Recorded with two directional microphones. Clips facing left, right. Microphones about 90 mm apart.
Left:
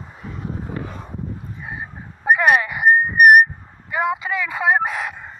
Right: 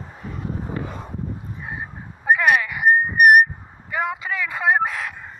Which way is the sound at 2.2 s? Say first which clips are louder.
Left 2 dB; 20° left (ahead or behind).